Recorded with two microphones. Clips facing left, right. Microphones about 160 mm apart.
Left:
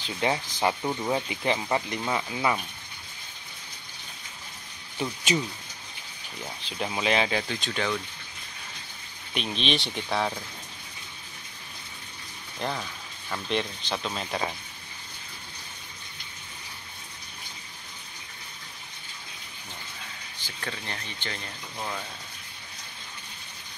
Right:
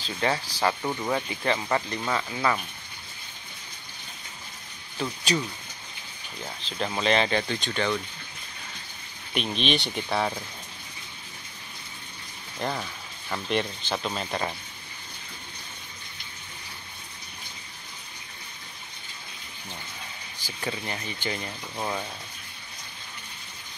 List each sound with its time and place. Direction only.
0.0 s speech: 15° left (ahead or behind)
6.6 s speech: 10° left (ahead or behind)
9.3 s speech: centre (ahead or behind)
12.5 s speech: centre (ahead or behind)
20.4 s speech: 10° right (ahead or behind)